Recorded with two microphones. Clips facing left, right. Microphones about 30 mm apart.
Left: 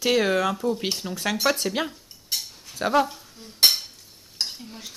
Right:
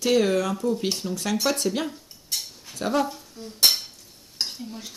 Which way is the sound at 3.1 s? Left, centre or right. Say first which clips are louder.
Right 4 dB; centre.